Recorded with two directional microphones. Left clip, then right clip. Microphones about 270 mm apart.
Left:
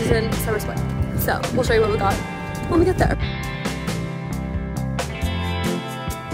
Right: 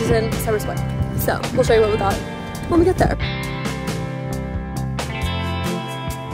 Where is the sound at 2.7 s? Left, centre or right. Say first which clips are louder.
Right 2 dB; centre.